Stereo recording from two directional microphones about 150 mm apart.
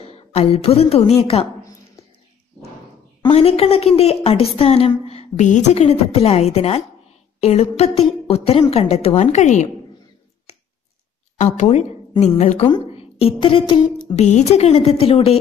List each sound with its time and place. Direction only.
0.0 s a woman's voice: 45° left (ahead or behind)
3.3 s a woman's voice: 40° left (ahead or behind)
12.2 s a woman's voice: 55° left (ahead or behind)
12.6 s a woman's voice: 35° left (ahead or behind)
14.2 s speech: 50° left (ahead or behind)